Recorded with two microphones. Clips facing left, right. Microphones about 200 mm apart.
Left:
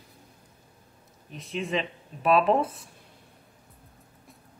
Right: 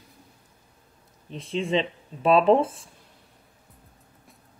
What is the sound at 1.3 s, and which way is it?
Speech, 30° right (ahead or behind).